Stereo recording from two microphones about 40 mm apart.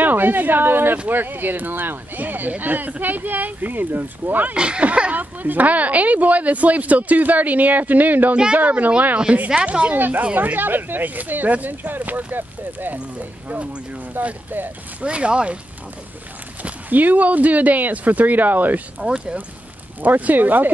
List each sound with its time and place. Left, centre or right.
0.0 s a woman's voice: right
4.6 s speech: right
5.1 s a woman's voice: right
9.9 s speech: right
15.0 s speech: right
16.9 s speech: right
19.0 s speech: right
20.0 s speech: right